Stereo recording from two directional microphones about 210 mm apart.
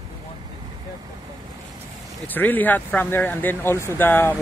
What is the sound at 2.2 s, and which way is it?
Speech, 10° left (ahead or behind).